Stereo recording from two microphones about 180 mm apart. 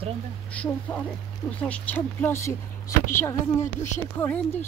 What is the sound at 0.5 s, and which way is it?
Speech, 5° left (ahead or behind).